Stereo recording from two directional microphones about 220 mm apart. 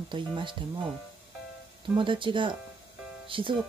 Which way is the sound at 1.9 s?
20° right (ahead or behind).